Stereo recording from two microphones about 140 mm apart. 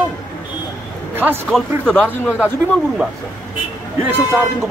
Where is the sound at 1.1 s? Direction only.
15° right (ahead or behind).